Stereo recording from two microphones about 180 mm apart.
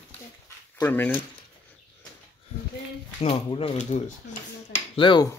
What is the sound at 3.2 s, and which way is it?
Speech, 30° left (ahead or behind).